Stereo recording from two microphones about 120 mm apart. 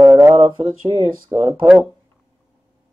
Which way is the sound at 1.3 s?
25° right (ahead or behind).